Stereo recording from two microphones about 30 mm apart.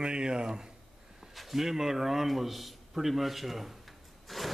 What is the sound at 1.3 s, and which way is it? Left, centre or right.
A man's voice, centre.